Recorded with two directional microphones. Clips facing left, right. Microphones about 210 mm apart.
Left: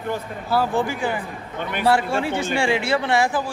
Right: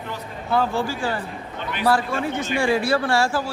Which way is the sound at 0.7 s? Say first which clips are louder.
Left 2 dB; 20° left (ahead or behind).